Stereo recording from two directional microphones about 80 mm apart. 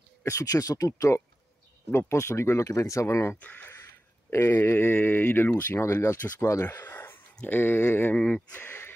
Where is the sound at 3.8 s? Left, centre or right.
Left.